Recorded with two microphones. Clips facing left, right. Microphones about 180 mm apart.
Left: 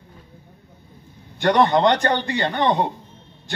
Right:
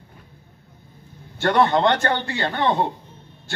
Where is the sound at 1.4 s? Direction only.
15° left (ahead or behind).